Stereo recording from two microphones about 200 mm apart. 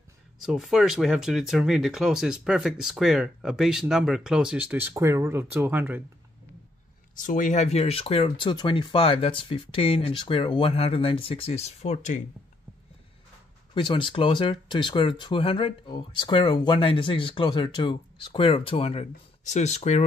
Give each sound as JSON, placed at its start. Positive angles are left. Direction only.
{"t": 0.4, "sound": "speech", "side_deg": 0}
{"t": 7.2, "sound": "speech", "side_deg": 40}
{"t": 13.7, "sound": "speech", "side_deg": 25}